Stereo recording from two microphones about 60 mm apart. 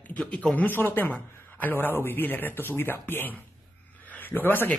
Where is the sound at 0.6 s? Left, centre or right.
Left.